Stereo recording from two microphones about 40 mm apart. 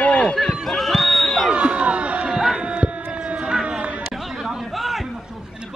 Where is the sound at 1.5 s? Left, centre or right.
Right.